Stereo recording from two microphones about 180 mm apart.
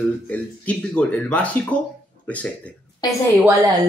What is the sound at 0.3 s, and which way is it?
Speech, 5° left (ahead or behind).